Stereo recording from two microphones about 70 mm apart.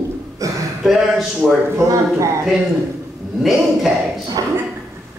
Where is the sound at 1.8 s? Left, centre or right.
Right.